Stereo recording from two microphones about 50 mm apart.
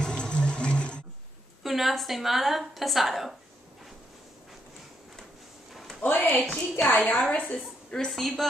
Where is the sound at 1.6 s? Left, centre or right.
Centre.